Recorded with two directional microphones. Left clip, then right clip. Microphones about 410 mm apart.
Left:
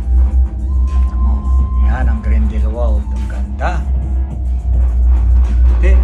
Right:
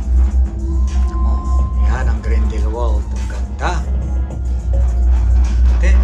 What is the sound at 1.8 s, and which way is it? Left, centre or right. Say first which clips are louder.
Music: left 1 dB; centre.